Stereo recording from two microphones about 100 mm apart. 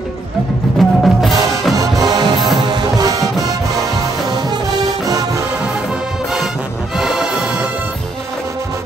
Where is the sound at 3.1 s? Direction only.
35° right (ahead or behind).